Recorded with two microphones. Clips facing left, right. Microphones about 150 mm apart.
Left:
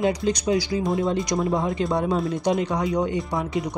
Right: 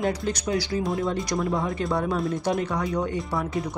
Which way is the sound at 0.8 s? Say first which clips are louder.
Left 3 dB; centre (ahead or behind).